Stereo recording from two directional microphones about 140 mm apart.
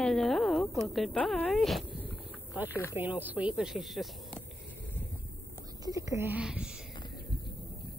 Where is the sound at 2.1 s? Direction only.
10° right (ahead or behind).